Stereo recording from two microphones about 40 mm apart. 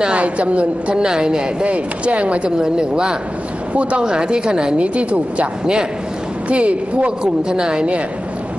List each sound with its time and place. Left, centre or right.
0.1 s a woman's voice: right
1.0 s a woman's voice: centre
1.7 s a woman's voice: right
2.6 s a woman's voice: centre
4.8 s a woman's voice: right
6.5 s a woman's voice: right
7.4 s a woman's voice: centre